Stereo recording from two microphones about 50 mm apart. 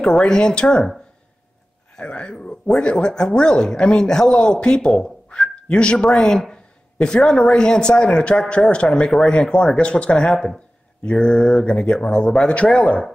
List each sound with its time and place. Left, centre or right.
0.0 s speech: centre
2.0 s a sound: left
2.6 s speech: centre